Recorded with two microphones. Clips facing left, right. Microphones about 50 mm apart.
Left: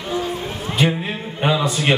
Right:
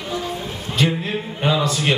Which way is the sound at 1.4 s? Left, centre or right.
Centre.